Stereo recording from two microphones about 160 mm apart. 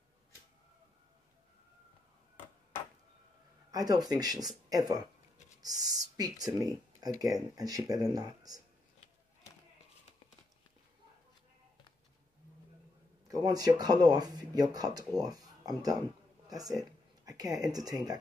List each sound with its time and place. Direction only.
3.7 s speech: 25° right (ahead or behind)
13.3 s speech: 25° right (ahead or behind)
16.4 s a sound: 20° right (ahead or behind)
17.2 s speech: 20° right (ahead or behind)